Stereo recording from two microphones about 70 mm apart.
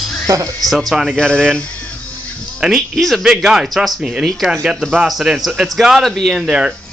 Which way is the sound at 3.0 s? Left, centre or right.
Centre.